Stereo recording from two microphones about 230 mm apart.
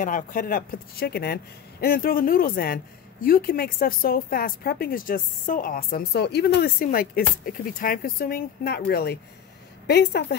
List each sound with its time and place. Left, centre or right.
0.0 s speech: left